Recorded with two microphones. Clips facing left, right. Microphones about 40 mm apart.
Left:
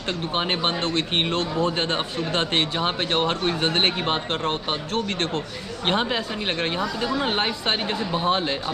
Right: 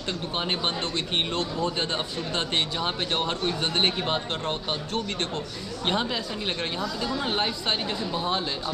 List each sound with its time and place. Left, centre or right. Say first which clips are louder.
0.3 s speech: left 4 dB; left
4.9 s speech: left 5 dB; left
5.9 s speech: left 4 dB; left